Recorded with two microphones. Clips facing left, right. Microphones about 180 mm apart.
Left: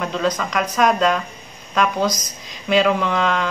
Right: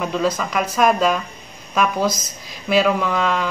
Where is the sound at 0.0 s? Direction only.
5° right (ahead or behind).